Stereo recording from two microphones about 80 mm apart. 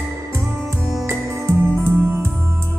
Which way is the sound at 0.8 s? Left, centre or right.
Right.